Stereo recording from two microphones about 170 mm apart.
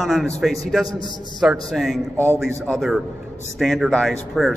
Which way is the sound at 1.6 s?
Centre (ahead or behind).